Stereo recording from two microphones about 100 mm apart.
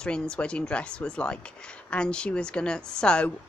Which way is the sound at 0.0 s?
10° left (ahead or behind).